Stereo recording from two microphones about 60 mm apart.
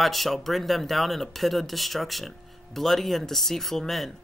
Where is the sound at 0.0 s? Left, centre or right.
Centre.